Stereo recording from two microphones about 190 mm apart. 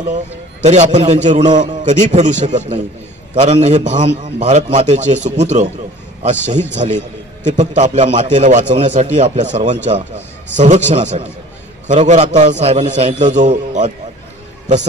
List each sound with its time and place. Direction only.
0.1 s a man's voice: 40° right (ahead or behind)
6.7 s a man's voice: 40° right (ahead or behind)